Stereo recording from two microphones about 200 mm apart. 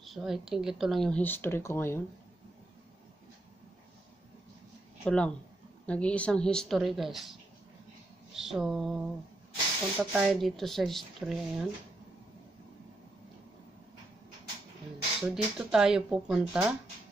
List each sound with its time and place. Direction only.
0.0 s speech: centre (ahead or behind)
5.0 s speech: 5° left (ahead or behind)
15.2 s speech: 5° right (ahead or behind)